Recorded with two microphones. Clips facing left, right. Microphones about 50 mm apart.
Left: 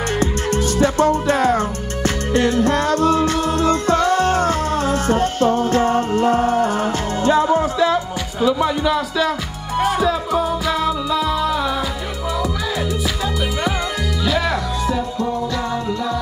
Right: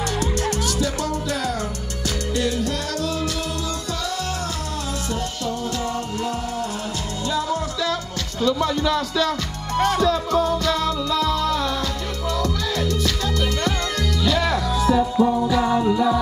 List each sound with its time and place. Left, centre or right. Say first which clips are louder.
0.2 s music: left 4 dB; left
8.5 s speech: left 3 dB; centre
9.8 s music: left 1 dB; centre
14.2 s music: left 1 dB; centre